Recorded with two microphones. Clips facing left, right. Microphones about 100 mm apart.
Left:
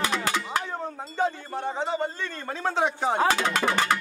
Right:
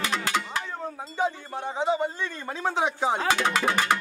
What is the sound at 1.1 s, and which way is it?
Speech, 15° right (ahead or behind).